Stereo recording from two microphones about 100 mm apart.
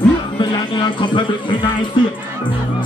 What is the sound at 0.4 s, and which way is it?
Music, 50° left (ahead or behind).